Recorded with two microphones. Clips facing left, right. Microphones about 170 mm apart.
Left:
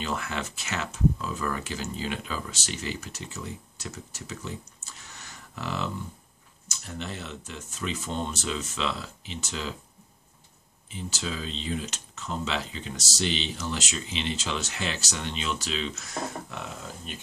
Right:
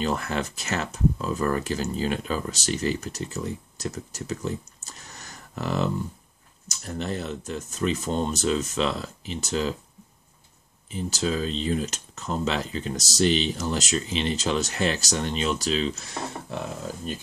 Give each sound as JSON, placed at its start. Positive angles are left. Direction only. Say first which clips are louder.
{"t": 0.0, "sound": "speech", "louder": "right 5 dB", "side_deg": -40}
{"t": 4.8, "sound": "a sound", "louder": "right 3 dB", "side_deg": -40}
{"t": 6.9, "sound": "speech", "louder": "right 7 dB", "side_deg": -40}
{"t": 10.9, "sound": "speech", "louder": "right 7 dB", "side_deg": -40}